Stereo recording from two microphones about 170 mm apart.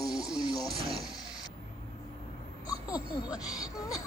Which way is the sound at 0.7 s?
35° right (ahead or behind).